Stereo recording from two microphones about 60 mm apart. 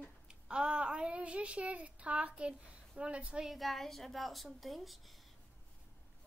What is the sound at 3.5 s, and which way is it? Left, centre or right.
A child's voice, centre.